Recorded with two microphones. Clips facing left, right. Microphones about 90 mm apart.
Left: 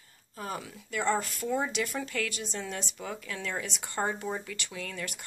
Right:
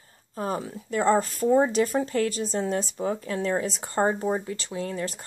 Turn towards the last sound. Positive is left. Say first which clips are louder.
# right 8 dB
turn(degrees=-30)  # may be behind; listen again after turning